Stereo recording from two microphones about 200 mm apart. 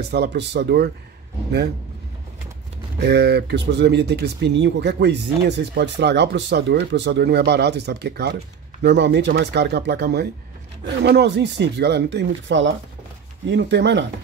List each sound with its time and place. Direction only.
0.1 s speech: 55° right (ahead or behind)
3.0 s speech: 55° right (ahead or behind)